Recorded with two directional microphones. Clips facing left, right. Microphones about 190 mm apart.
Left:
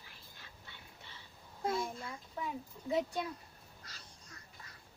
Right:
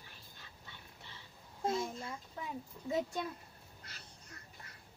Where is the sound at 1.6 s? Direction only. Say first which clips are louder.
Even; 25° right (ahead or behind).